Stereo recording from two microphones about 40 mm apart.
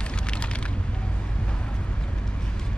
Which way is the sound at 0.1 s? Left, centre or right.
Left.